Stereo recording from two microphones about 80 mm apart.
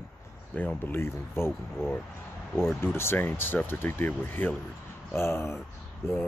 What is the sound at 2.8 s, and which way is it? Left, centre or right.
Speech, left.